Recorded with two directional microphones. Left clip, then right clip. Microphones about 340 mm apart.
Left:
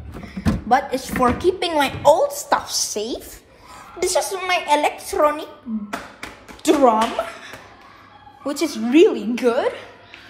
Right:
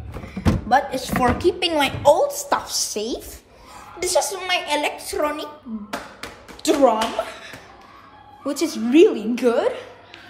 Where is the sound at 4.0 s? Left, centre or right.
Centre.